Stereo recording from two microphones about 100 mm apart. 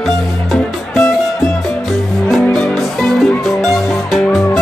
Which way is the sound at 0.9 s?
25° left (ahead or behind).